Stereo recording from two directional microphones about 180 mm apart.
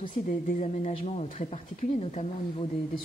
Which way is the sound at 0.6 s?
40° left (ahead or behind).